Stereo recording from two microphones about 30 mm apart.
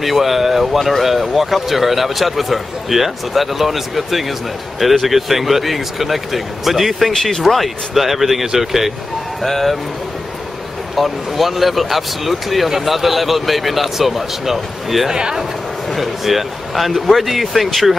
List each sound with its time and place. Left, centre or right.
0.0 s a man's voice: centre
7.1 s speech: centre
7.5 s a man's voice: centre
9.4 s speech: centre
11.0 s a man's voice: centre
15.0 s a man's voice: centre
15.9 s a man's voice: centre